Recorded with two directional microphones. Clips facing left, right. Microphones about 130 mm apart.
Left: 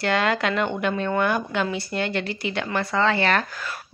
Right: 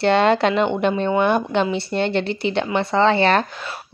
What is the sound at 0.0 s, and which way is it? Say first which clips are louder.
Speech: right 7 dB; 25° right (ahead or behind).